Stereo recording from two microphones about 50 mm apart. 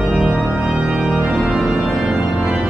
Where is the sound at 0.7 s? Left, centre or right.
Centre.